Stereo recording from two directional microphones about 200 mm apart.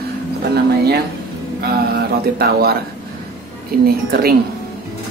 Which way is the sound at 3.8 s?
50° right (ahead or behind).